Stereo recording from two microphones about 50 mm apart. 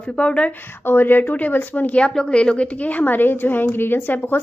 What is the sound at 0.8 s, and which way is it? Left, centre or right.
A woman's voice, left.